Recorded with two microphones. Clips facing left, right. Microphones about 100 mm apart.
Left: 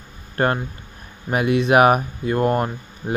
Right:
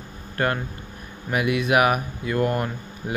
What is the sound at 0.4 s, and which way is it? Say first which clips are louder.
Speech: left 4 dB; 35° left (ahead or behind).